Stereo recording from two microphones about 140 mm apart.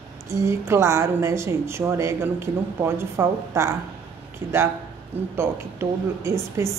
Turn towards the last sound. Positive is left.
turn(degrees=-20)  # may be behind; listen again after turning